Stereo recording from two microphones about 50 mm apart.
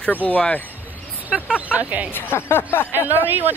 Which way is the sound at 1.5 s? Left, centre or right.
Right.